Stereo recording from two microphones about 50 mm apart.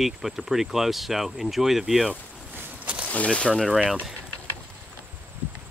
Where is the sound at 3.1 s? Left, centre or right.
Left.